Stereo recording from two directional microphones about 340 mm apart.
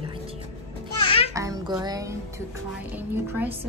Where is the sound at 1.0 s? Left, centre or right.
Centre.